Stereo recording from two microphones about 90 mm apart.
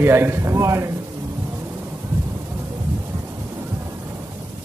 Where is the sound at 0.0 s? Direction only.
25° right (ahead or behind).